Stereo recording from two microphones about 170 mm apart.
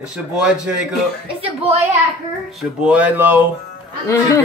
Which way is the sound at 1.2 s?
35° right (ahead or behind).